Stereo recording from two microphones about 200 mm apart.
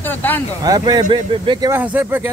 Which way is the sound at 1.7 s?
10° right (ahead or behind).